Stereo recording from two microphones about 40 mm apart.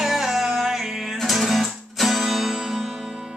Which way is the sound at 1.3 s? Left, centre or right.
Centre.